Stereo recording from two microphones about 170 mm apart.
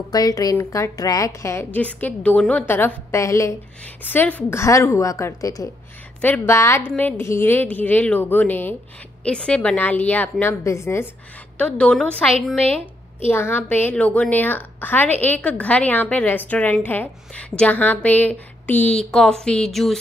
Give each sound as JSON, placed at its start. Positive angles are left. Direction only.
{"t": 0.1, "sound": "a woman's voice", "side_deg": 20}
{"t": 13.3, "sound": "a woman's voice", "side_deg": 15}